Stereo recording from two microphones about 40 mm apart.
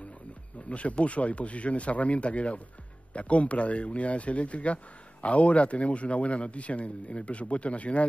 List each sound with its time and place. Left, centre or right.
0.7 s a man's voice: left